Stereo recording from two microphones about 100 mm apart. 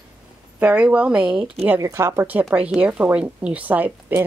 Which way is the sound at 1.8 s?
25° right (ahead or behind).